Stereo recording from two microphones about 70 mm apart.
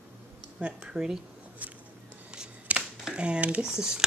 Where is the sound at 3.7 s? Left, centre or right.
Centre.